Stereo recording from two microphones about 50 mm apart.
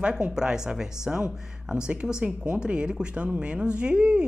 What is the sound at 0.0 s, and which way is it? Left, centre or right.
Speech, centre.